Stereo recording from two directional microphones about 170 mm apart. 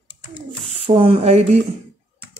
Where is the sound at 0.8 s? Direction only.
35° right (ahead or behind).